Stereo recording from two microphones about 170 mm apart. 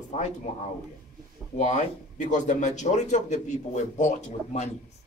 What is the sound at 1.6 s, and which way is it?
Speech, 45° left (ahead or behind).